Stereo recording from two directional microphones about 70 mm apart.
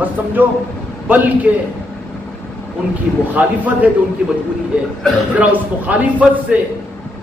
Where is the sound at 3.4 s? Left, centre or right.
Centre.